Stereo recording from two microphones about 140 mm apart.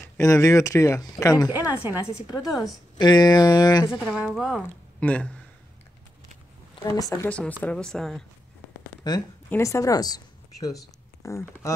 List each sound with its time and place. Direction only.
0.2 s a woman's voice: 20° left (ahead or behind)
1.5 s a woman's voice: 15° right (ahead or behind)
2.3 s a woman's voice: 30° left (ahead or behind)
4.3 s speech: 5° right (ahead or behind)
5.0 s speech: 10° left (ahead or behind)
6.7 s speech: 25° left (ahead or behind)
7.2 s speech: 10° left (ahead or behind)
9.0 s a woman's voice: 30° left (ahead or behind)